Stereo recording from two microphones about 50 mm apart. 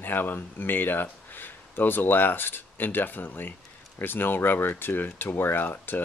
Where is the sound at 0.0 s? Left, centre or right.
Left.